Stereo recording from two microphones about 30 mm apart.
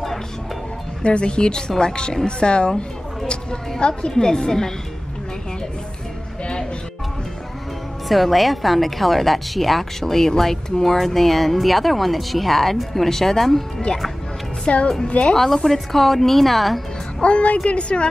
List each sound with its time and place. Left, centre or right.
1.0 s a woman's voice: left
4.1 s a woman's voice: left
8.1 s a woman's voice: centre
14.7 s speech: left
15.3 s a woman's voice: centre
17.2 s a woman's voice: left